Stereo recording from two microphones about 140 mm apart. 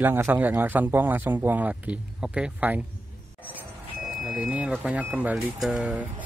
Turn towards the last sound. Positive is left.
turn(degrees=-5)  # may be behind; listen again after turning